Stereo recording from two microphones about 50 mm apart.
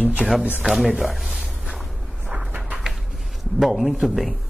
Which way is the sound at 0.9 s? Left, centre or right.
Centre.